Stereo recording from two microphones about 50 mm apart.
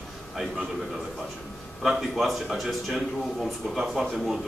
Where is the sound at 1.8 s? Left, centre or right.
Centre.